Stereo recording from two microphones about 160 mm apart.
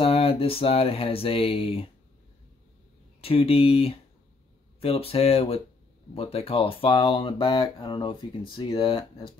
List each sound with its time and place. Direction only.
0.0 s speech: 35° left (ahead or behind)
3.2 s speech: 35° left (ahead or behind)